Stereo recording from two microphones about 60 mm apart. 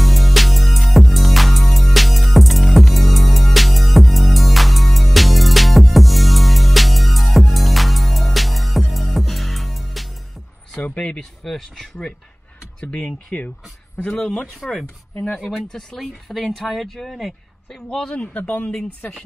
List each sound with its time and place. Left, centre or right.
0.0 s music: centre
10.8 s speech: centre
11.4 s speech: centre
12.8 s speech: left
14.3 s speech: centre
17.9 s speech: centre